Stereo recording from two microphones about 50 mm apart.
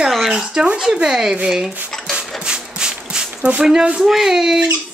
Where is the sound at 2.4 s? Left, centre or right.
Centre.